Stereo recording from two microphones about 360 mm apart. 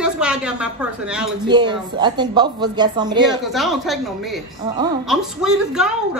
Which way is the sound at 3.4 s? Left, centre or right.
Centre.